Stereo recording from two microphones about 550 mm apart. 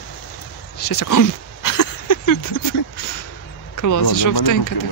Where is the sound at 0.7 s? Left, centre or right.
Left.